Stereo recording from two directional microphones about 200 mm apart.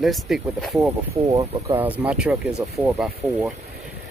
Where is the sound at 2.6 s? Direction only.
15° right (ahead or behind).